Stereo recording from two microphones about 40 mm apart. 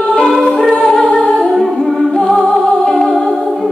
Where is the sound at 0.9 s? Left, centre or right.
Centre.